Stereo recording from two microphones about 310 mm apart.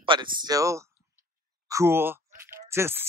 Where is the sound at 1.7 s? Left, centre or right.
Centre.